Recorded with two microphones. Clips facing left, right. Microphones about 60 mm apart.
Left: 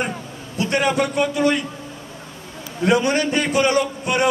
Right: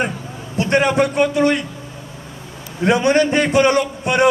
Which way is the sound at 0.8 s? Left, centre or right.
Right.